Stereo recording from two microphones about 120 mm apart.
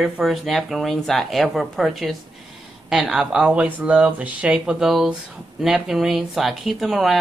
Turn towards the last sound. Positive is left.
turn(degrees=0)  # may be behind; listen again after turning